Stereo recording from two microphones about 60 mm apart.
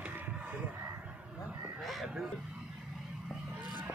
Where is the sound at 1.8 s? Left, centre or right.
Centre.